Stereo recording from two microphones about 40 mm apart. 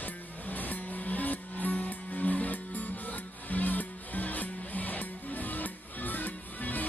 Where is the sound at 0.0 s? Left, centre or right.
Left.